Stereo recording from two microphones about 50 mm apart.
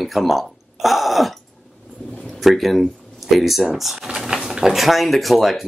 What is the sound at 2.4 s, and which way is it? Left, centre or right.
Speech, centre.